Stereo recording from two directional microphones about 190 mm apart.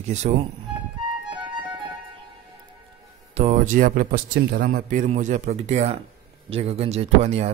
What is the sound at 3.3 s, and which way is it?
A man's voice, 35° right (ahead or behind).